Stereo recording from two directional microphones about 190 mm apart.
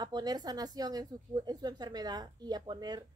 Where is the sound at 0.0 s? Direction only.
20° right (ahead or behind).